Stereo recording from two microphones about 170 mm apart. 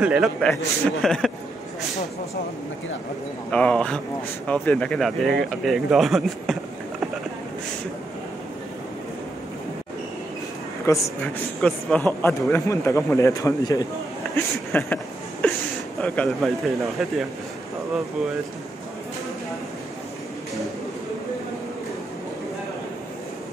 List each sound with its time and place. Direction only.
0.0 s speech: 5° right (ahead or behind)
3.5 s speech: 5° left (ahead or behind)
10.9 s speech: 15° left (ahead or behind)
15.4 s a sound: 10° left (ahead or behind)
16.0 s speech: 5° left (ahead or behind)